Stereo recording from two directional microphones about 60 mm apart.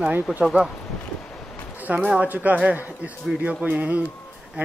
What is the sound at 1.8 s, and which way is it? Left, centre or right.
A man's voice, right.